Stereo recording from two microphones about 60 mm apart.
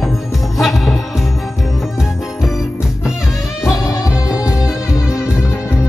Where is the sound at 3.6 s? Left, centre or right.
Left.